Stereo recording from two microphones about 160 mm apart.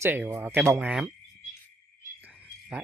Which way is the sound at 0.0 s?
10° right (ahead or behind).